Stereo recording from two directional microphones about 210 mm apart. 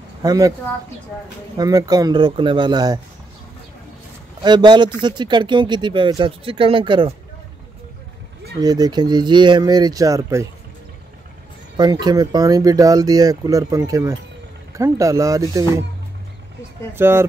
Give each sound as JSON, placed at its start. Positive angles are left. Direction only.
{"t": 0.2, "sound": "speech", "side_deg": -20}
{"t": 1.6, "sound": "speech", "side_deg": -15}
{"t": 4.4, "sound": "speech", "side_deg": -20}
{"t": 8.5, "sound": "speech", "side_deg": -20}
{"t": 11.7, "sound": "speech", "side_deg": -20}
{"t": 16.9, "sound": "speech", "side_deg": -10}